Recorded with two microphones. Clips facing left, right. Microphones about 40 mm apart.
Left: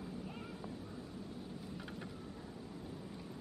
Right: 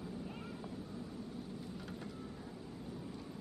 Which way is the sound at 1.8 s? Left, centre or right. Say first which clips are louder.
Even; centre.